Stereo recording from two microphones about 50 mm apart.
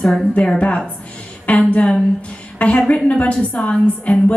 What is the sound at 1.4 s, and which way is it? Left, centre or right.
Speech, left.